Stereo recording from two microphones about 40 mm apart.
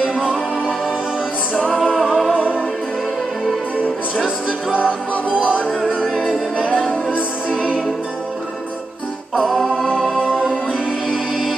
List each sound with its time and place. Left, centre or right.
0.0 s music: right
1.5 s music: left
1.9 s music: centre
4.7 s music: left
5.3 s music: right
6.6 s music: left
6.9 s music: left
9.5 s music: centre